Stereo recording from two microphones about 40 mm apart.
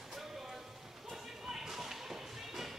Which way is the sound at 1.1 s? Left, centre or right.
Centre.